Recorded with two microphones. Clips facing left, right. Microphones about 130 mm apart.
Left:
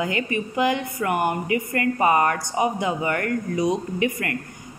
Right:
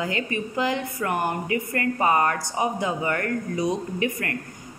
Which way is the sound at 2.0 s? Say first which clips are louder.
Left 2 dB; 15° left (ahead or behind).